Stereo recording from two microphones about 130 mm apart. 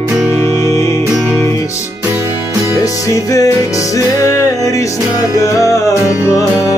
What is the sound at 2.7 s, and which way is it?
Music, 25° left (ahead or behind).